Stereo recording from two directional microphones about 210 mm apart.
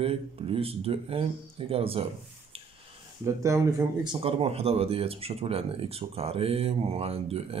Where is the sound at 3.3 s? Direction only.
15° right (ahead or behind).